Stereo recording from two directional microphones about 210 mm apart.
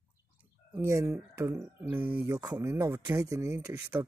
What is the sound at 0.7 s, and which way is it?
Speech, 15° right (ahead or behind).